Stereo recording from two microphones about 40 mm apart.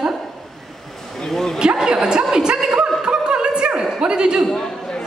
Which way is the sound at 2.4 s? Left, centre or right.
Right.